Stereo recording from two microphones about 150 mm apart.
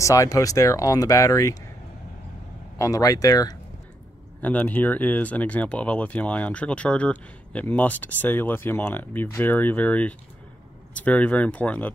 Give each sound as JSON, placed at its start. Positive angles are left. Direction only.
{"t": 0.0, "sound": "speech", "side_deg": 20}
{"t": 2.8, "sound": "speech", "side_deg": 25}
{"t": 4.4, "sound": "speech", "side_deg": 10}